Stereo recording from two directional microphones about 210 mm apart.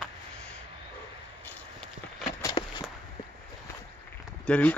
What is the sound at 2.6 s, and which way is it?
Walk, 25° left (ahead or behind).